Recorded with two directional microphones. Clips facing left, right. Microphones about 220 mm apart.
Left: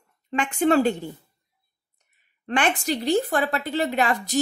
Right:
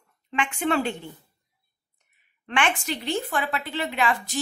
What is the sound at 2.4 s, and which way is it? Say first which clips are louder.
A woman's voice: left 3 dB; 40° left (ahead or behind).